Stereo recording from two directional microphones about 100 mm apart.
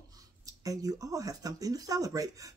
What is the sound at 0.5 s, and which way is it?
Speech, 35° right (ahead or behind).